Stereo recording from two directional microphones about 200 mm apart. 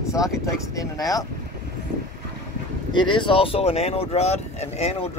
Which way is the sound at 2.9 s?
25° left (ahead or behind).